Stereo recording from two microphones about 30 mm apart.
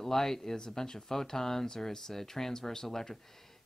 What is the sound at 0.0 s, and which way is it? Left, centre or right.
Speech, centre.